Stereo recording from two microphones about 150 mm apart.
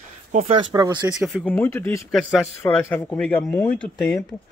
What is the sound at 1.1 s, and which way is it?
Speech, centre (ahead or behind).